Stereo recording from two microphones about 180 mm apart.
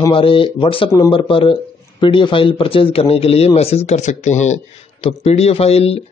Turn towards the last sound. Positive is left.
turn(degrees=35)  # may be behind; listen again after turning